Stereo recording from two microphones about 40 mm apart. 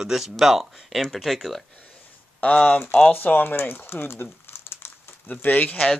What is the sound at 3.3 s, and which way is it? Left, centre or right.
Speech, left.